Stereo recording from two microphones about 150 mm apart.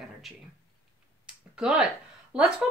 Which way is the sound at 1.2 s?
5° right (ahead or behind).